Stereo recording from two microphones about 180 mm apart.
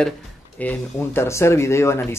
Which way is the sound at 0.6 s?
10° left (ahead or behind).